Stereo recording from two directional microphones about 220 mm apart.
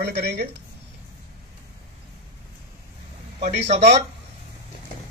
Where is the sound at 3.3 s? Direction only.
30° right (ahead or behind).